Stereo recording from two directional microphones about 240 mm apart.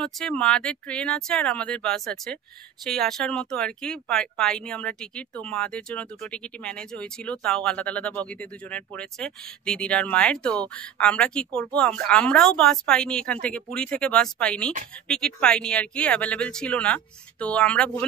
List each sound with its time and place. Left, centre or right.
0.0 s speech: centre